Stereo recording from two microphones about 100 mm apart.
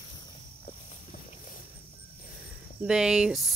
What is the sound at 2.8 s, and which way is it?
Speech, 5° right (ahead or behind).